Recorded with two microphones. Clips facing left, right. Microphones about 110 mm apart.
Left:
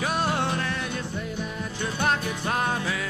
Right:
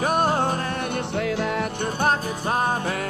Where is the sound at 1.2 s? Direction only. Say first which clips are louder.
Right 8 dB; 90° right.